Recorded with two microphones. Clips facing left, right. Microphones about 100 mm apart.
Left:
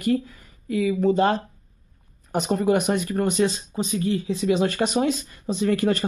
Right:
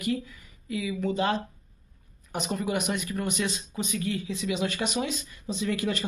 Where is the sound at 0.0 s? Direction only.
40° left (ahead or behind).